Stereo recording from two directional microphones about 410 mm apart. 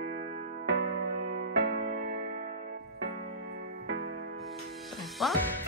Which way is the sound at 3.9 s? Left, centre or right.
Right.